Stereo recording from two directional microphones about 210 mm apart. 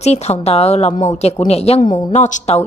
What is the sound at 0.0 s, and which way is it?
A woman's voice, 30° left (ahead or behind).